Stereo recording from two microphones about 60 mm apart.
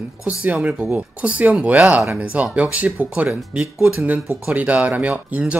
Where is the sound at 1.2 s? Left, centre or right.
Right.